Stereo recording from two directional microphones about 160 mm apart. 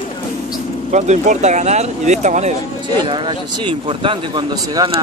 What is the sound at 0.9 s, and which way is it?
Speech, 45° right (ahead or behind).